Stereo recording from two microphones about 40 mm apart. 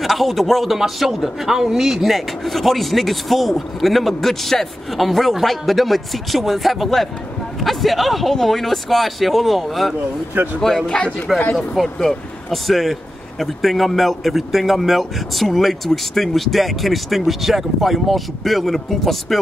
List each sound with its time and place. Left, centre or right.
0.0 s a man's voice: centre
10.4 s speech: right
11.5 s a man's voice: centre